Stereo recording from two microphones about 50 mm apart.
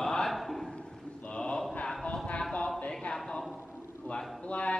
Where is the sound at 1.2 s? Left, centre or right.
Left.